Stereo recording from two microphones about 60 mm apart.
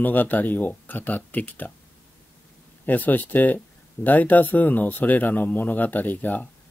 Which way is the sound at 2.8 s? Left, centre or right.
Left.